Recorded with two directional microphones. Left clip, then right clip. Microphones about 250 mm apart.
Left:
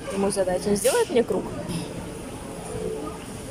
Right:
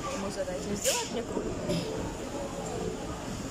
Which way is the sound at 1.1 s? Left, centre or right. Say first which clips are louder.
Left 14 dB; left.